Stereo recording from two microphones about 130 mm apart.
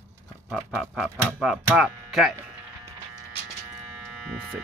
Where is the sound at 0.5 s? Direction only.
5° left (ahead or behind).